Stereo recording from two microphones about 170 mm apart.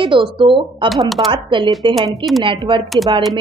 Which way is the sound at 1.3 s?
30° right (ahead or behind).